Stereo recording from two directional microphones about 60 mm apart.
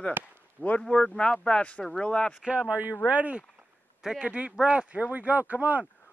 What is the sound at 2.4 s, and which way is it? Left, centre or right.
Speech, right.